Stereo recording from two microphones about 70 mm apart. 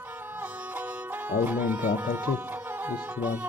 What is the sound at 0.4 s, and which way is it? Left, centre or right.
Music, right.